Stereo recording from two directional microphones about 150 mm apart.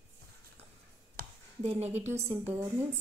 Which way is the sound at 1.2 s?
75° right (ahead or behind).